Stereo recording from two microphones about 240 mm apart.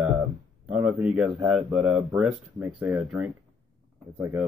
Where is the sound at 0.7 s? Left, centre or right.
Centre.